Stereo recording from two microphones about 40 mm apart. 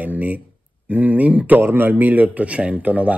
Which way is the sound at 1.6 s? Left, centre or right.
Right.